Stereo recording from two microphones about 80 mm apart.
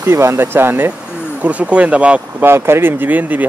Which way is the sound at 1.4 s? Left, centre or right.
Centre.